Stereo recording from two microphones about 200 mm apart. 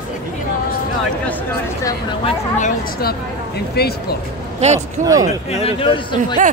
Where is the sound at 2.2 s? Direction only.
40° left (ahead or behind).